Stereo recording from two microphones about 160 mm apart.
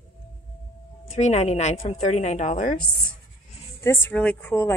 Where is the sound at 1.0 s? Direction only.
45° left (ahead or behind).